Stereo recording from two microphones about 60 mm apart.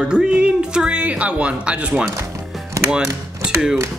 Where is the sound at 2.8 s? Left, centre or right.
Centre.